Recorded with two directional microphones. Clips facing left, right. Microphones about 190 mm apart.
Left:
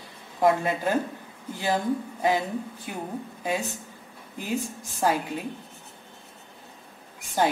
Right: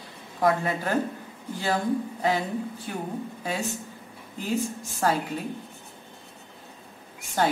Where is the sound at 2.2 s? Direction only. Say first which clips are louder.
Left 2 dB; 15° left (ahead or behind).